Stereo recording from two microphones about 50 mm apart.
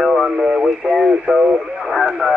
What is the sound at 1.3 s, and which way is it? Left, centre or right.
Speech, right.